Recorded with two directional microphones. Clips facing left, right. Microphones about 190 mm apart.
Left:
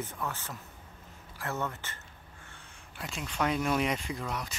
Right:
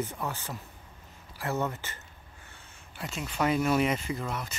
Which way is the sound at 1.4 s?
15° right (ahead or behind).